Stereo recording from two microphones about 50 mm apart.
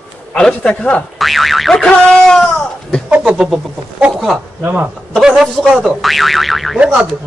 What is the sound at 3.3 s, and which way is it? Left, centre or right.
Speech, centre.